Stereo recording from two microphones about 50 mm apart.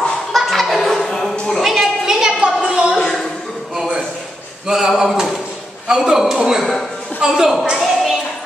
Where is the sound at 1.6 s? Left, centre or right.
Centre.